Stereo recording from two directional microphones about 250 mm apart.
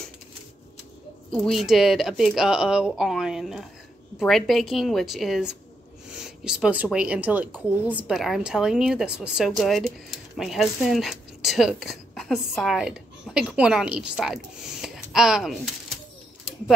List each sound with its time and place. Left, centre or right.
1.3 s speech: centre